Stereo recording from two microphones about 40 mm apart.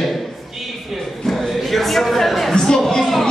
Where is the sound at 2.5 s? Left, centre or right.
Centre.